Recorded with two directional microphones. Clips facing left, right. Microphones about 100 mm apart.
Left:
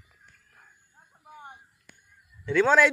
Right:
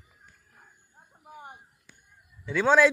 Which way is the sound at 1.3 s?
5° right (ahead or behind).